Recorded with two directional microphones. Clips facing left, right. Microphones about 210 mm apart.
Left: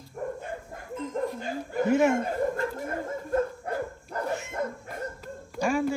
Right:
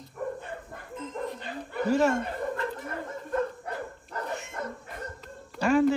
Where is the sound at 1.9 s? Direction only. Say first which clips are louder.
Left 1 dB; 20° left (ahead or behind).